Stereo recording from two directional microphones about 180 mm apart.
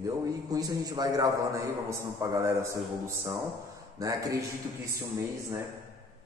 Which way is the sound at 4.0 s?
20° right (ahead or behind).